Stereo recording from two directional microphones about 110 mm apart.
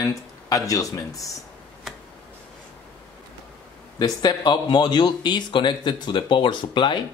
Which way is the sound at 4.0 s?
40° left (ahead or behind).